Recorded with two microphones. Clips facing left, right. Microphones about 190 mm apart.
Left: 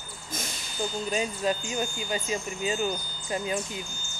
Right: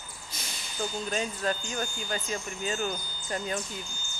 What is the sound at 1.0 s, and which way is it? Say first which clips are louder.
Speech: left 4 dB; 5° left (ahead or behind).